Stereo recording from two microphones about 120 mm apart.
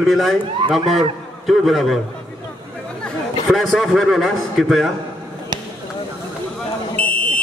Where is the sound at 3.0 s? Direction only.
Centre (ahead or behind).